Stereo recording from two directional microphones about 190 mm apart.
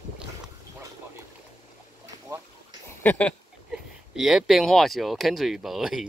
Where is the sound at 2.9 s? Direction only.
10° left (ahead or behind).